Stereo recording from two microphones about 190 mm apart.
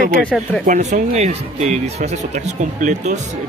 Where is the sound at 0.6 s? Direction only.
40° right (ahead or behind).